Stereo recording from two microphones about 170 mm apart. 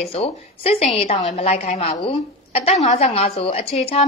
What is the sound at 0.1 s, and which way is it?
A woman's voice, 35° left (ahead or behind).